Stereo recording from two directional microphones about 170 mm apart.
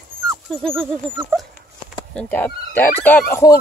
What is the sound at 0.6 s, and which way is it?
Speech, 5° left (ahead or behind).